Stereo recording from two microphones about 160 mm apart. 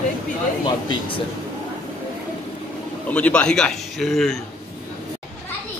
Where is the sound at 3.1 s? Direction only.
10° left (ahead or behind).